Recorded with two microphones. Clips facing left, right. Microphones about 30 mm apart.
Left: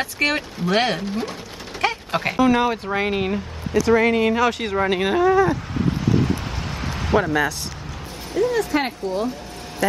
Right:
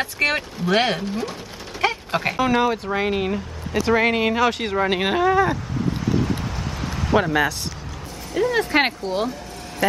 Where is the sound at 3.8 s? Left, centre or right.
Centre.